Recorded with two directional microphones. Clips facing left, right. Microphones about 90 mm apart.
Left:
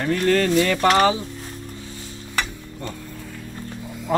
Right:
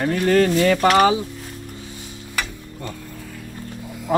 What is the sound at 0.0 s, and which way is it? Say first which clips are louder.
Speech: right 2 dB; 20° right (ahead or behind).